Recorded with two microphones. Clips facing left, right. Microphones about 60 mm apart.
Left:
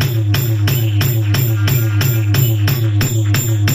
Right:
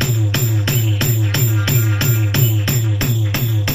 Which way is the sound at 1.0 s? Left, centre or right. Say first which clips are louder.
Left 1 dB; left.